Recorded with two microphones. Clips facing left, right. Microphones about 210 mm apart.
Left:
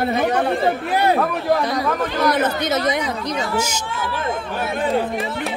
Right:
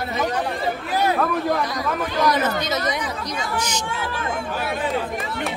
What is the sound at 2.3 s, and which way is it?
Speech, 55° left (ahead or behind).